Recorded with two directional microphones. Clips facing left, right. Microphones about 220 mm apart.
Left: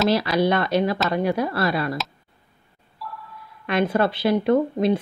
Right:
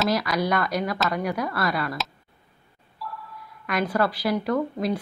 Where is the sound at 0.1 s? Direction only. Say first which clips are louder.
Left 4 dB; 30° left (ahead or behind).